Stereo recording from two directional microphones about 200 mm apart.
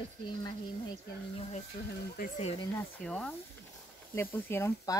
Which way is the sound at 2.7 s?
10° left (ahead or behind).